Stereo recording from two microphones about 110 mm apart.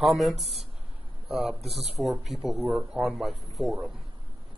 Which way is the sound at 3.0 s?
Centre (ahead or behind).